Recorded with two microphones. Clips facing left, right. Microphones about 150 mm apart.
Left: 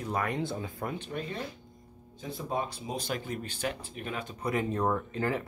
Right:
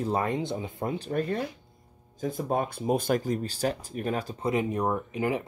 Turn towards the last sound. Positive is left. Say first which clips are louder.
# right 3 dB
turn(degrees=-15)  # may be behind; listen again after turning